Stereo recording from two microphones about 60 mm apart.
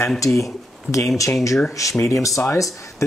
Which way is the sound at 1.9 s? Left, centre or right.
Left.